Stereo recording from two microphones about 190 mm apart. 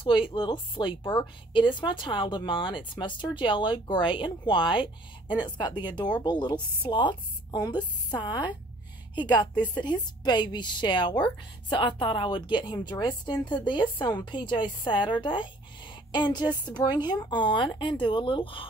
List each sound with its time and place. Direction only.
0.0 s a woman's voice: 25° left (ahead or behind)